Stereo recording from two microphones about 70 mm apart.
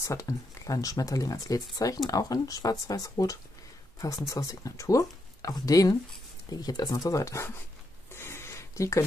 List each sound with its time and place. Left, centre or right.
0.0 s speech: left
4.3 s speech: left
5.5 s speech: left
8.1 s a sound: left